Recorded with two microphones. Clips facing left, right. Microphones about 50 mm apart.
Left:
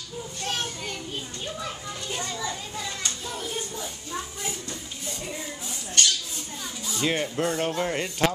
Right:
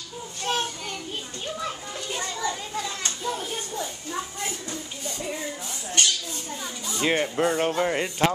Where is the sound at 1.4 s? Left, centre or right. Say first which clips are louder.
Right 4 dB; centre.